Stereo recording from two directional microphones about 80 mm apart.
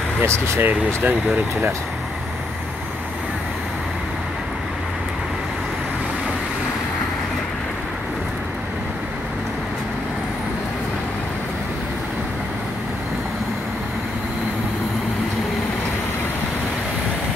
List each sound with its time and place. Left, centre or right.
0.2 s speech: right